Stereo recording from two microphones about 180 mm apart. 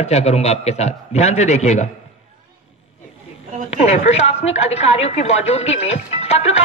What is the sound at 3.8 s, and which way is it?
A woman's voice, 40° left (ahead or behind).